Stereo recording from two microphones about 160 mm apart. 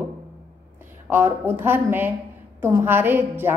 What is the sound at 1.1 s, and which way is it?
A woman's voice, 15° right (ahead or behind).